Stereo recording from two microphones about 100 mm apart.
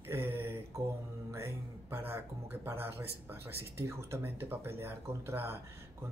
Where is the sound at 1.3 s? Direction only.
25° right (ahead or behind).